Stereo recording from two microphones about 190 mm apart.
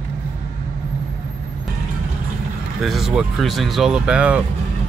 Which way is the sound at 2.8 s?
Centre (ahead or behind).